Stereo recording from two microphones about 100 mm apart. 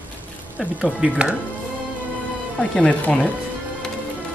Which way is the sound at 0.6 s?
5° right (ahead or behind).